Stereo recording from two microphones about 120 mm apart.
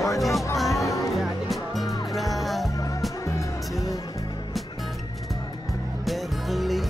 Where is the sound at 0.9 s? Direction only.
30° left (ahead or behind).